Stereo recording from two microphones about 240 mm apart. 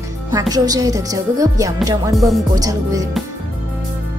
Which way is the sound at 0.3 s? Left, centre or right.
Centre.